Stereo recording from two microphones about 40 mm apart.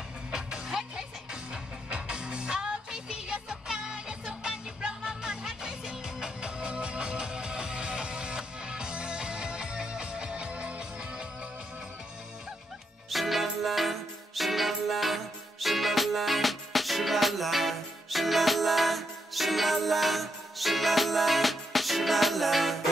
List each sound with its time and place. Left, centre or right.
0.3 s music: centre
13.1 s music: centre